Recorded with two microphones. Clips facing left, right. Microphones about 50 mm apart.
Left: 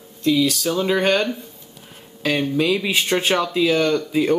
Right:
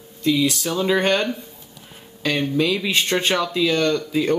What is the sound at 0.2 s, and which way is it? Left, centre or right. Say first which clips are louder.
Speech: left 1 dB; centre.